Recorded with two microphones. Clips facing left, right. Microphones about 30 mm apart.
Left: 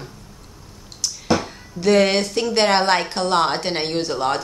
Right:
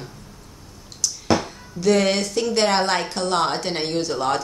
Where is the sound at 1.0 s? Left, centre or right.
Left.